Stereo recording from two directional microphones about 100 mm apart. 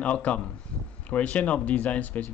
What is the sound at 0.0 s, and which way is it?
Speech, 15° left (ahead or behind).